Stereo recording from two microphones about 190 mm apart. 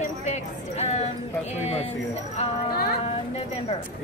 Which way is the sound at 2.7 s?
55° left (ahead or behind).